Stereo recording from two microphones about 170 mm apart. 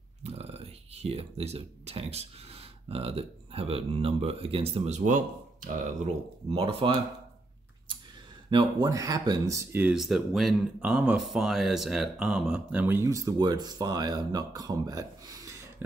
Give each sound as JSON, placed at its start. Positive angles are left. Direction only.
{"t": 0.2, "sound": "speech", "side_deg": -35}
{"t": 6.5, "sound": "speech", "side_deg": -30}
{"t": 8.5, "sound": "speech", "side_deg": -25}